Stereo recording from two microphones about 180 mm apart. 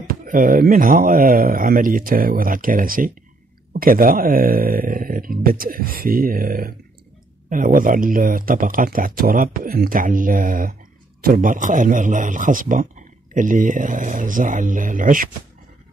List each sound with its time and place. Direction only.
0.0 s a man's voice: 50° right (ahead or behind)